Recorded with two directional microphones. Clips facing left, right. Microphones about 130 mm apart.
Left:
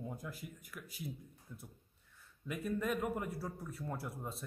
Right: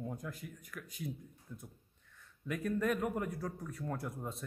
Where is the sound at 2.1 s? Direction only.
5° left (ahead or behind).